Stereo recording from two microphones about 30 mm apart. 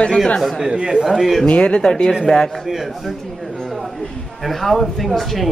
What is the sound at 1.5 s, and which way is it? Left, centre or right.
Speech, left.